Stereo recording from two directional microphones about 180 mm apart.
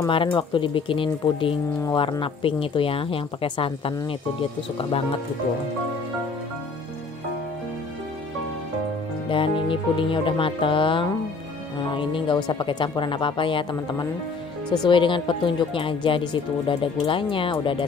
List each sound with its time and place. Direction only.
0.1 s speech: 30° left (ahead or behind)
9.3 s speech: 30° left (ahead or behind)